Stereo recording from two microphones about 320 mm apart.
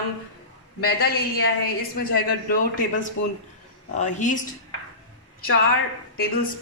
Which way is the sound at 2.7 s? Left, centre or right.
Left.